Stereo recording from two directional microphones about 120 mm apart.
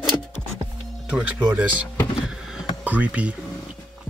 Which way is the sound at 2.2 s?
5° right (ahead or behind).